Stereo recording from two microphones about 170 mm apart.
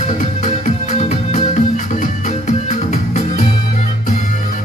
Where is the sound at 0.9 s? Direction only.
40° left (ahead or behind).